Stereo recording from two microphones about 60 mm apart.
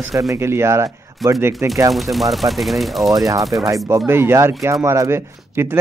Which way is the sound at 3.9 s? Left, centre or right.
Right.